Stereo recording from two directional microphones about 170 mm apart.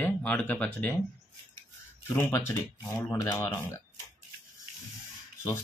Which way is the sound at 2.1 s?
15° left (ahead or behind).